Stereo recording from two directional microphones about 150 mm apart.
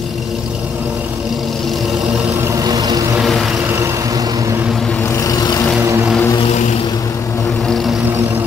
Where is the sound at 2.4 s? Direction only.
25° right (ahead or behind).